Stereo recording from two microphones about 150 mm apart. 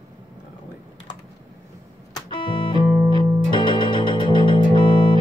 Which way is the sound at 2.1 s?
30° left (ahead or behind).